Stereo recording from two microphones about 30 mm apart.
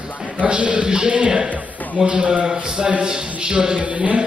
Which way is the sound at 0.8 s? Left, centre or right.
Right.